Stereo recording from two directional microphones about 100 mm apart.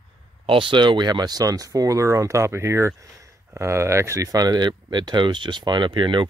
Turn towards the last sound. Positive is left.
turn(degrees=-50)  # may be behind; listen again after turning